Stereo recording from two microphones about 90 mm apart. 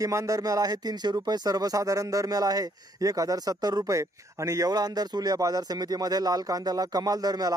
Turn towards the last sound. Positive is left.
turn(degrees=-45)  # may be behind; listen again after turning